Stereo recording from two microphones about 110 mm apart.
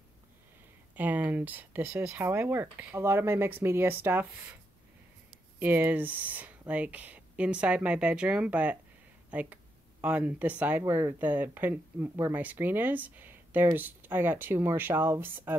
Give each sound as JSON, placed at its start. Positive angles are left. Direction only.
{"t": 0.9, "sound": "speech", "side_deg": -15}
{"t": 5.6, "sound": "speech", "side_deg": -15}